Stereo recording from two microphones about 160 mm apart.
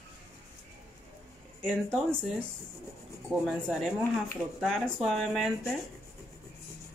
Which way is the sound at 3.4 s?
Centre (ahead or behind).